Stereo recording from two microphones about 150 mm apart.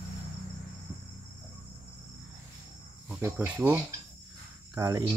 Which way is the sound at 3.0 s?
10° right (ahead or behind).